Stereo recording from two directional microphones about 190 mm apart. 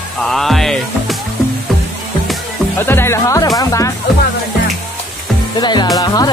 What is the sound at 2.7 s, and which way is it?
Music, 10° left (ahead or behind).